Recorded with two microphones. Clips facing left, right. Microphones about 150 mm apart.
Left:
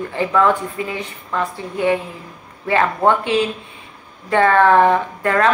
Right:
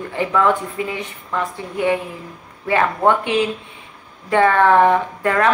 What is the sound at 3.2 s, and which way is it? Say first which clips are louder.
A woman's voice: left 1 dB; 20° right (ahead or behind).